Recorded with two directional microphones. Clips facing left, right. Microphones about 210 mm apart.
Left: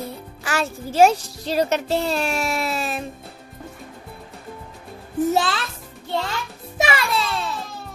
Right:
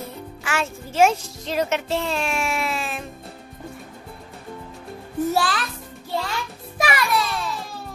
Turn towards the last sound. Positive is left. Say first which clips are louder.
# right 1 dB
turn(degrees=25)  # may be behind; listen again after turning